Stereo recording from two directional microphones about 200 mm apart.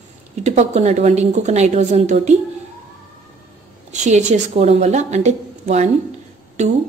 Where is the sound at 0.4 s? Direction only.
35° right (ahead or behind).